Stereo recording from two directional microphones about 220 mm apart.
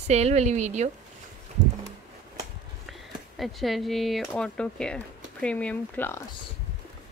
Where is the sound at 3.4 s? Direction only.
Centre (ahead or behind).